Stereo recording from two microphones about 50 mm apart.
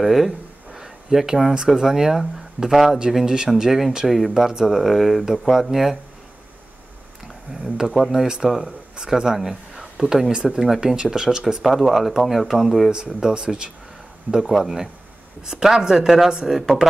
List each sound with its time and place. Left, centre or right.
0.0 s speech: centre
7.6 s speech: centre
12.9 s speech: centre
14.5 s speech: centre